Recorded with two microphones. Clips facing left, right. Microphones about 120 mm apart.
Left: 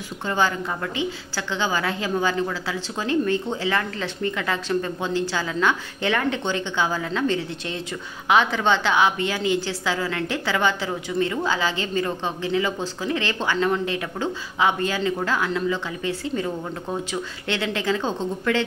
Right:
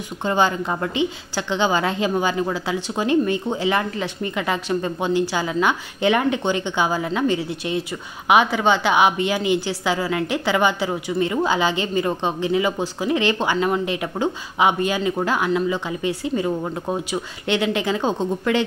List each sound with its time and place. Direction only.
0.2 s a woman's voice: 20° right (ahead or behind)